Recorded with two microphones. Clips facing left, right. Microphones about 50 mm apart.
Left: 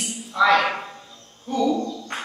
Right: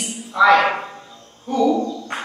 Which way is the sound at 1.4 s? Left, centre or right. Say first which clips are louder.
Right 4 dB; centre.